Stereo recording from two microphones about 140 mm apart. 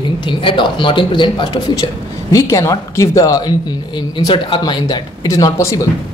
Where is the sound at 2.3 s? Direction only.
20° left (ahead or behind).